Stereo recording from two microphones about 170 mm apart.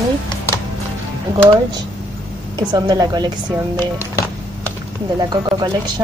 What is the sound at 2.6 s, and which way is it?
Speech, 25° right (ahead or behind).